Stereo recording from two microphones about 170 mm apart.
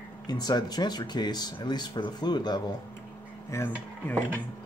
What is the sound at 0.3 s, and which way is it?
Speech, 25° left (ahead or behind).